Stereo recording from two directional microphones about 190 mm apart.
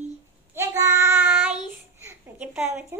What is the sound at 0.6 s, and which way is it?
Child singing, 10° right (ahead or behind).